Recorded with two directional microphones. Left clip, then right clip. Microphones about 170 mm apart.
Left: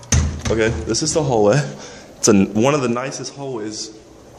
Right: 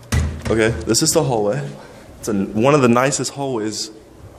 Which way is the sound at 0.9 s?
30° right (ahead or behind).